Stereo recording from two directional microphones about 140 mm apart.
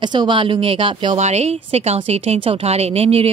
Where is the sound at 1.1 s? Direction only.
55° right (ahead or behind).